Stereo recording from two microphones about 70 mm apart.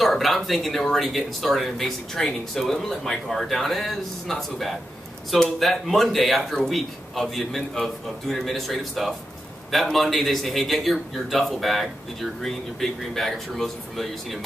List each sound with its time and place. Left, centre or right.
0.0 s speech: centre